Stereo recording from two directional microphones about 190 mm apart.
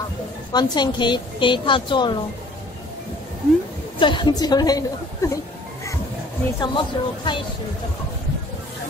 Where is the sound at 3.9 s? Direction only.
25° left (ahead or behind).